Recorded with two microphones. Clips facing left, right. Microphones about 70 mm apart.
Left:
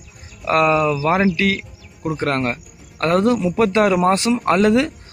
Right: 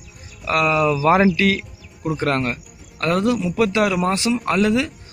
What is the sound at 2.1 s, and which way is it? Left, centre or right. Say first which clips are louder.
Speech: left 1 dB; left.